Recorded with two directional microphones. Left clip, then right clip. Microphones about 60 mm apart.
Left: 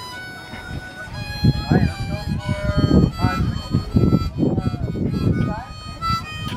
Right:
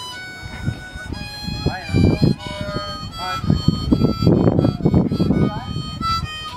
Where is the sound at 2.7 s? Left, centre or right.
Left.